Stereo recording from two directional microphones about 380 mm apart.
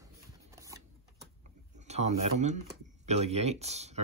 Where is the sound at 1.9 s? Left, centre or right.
Centre.